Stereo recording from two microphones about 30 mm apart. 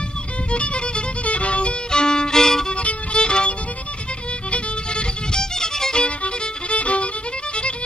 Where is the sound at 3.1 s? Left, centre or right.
Left.